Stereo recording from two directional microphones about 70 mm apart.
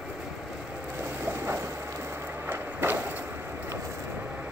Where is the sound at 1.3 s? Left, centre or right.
Right.